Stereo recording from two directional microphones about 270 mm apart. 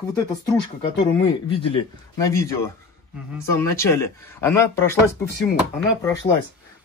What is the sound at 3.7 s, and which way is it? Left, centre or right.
Speech, centre.